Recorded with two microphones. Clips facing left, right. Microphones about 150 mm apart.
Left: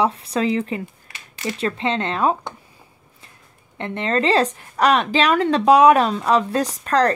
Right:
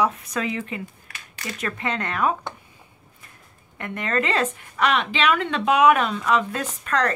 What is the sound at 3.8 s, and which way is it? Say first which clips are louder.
Speech: left 4 dB; 30° left (ahead or behind).